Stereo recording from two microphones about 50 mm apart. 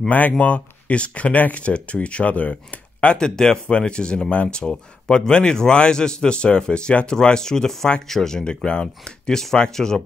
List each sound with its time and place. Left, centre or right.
0.4 s speech: left